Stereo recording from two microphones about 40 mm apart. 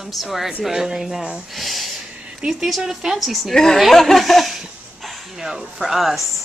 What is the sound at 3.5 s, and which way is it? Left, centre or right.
A woman's voice, centre.